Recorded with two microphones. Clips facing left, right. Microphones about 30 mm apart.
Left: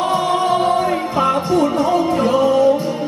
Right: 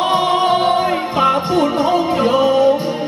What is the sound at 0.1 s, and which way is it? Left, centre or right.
Music, right.